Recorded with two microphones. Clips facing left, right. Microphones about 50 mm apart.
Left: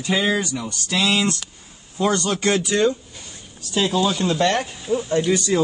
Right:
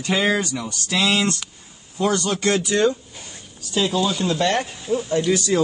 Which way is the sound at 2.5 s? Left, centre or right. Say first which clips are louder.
Right 1 dB; centre.